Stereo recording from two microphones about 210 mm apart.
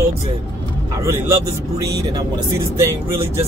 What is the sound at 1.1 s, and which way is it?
Speech, 15° right (ahead or behind).